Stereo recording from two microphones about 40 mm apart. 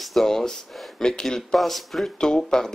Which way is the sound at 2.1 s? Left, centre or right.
Centre.